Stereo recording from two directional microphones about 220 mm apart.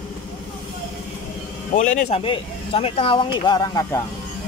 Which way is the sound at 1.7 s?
30° left (ahead or behind).